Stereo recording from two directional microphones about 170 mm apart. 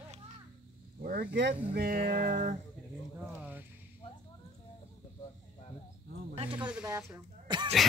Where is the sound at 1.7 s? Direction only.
65° right (ahead or behind); by 2.5 s 45° right (ahead or behind).